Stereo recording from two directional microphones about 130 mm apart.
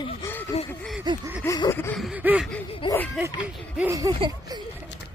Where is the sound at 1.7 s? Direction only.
20° left (ahead or behind).